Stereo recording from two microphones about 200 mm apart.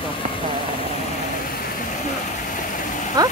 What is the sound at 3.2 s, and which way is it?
Speech, 20° right (ahead or behind).